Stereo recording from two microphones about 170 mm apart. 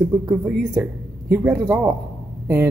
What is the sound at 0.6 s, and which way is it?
A woman's voice, 5° right (ahead or behind).